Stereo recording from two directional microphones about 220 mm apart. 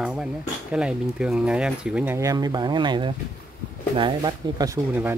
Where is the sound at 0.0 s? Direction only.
5° right (ahead or behind).